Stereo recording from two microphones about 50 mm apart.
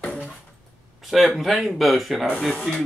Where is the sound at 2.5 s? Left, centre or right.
Left.